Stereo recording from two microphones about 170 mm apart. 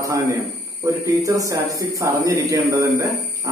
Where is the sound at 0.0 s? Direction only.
20° right (ahead or behind).